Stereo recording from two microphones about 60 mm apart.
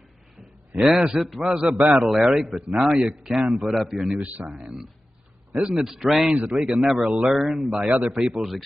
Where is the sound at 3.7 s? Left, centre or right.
Centre.